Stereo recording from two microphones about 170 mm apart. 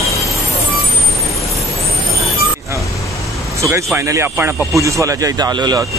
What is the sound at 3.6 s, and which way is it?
A man's voice, 15° right (ahead or behind).